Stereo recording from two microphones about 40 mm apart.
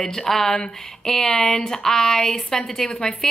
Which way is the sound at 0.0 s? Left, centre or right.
Centre.